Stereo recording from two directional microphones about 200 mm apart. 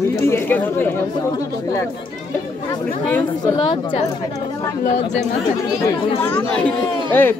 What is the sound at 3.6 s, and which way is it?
Speech, 30° left (ahead or behind).